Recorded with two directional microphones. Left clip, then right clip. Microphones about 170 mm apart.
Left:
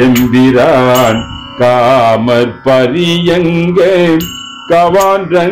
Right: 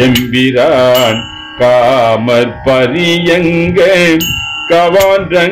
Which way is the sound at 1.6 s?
15° left (ahead or behind).